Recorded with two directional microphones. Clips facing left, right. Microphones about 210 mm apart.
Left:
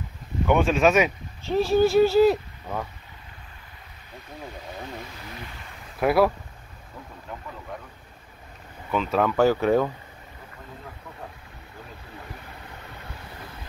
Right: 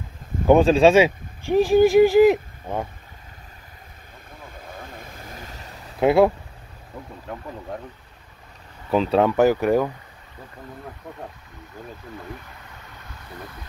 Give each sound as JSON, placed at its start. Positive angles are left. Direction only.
{"t": 0.5, "sound": "speech", "side_deg": -35}
{"t": 1.4, "sound": "speech", "side_deg": -15}
{"t": 4.9, "sound": "vehicle", "side_deg": -50}
{"t": 5.9, "sound": "speech", "side_deg": -25}
{"t": 8.9, "sound": "speech", "side_deg": -30}